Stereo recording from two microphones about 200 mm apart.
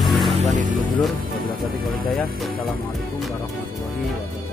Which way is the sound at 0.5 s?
40° right (ahead or behind).